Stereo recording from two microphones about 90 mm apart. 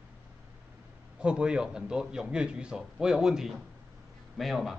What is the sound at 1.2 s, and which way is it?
A man's voice, 10° right (ahead or behind).